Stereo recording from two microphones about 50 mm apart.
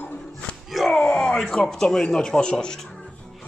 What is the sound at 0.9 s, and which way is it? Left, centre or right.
Speech, centre.